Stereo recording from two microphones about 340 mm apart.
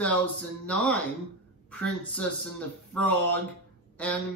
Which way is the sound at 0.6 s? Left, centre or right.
Centre.